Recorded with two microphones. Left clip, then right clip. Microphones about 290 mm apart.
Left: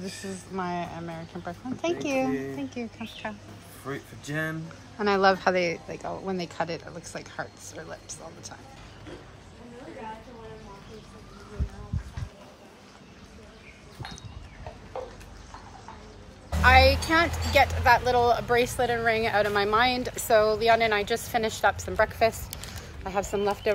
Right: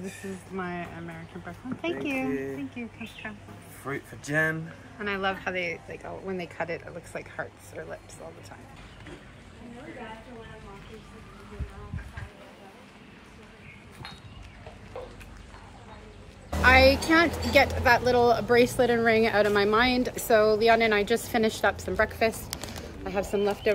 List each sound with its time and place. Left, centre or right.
0.6 s speech: centre
2.3 s speech: centre
3.2 s speech: centre
5.0 s speech: centre
5.6 s speech: left
14.9 s a sound: left
16.6 s speech: centre